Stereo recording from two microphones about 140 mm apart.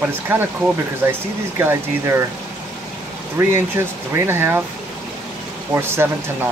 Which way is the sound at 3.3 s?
20° right (ahead or behind).